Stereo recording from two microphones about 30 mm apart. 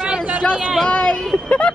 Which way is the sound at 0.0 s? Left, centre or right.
Right.